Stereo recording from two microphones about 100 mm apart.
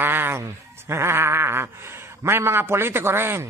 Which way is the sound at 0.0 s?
20° right (ahead or behind).